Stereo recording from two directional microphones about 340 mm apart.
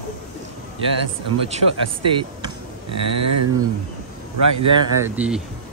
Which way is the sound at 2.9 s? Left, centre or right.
Right.